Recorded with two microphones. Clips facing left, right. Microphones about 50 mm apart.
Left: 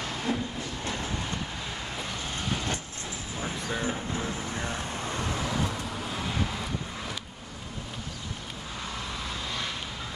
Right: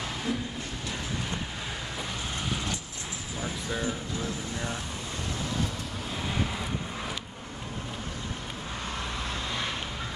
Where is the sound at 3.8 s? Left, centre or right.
Left.